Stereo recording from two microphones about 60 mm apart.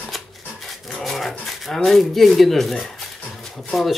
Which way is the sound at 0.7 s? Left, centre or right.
Centre.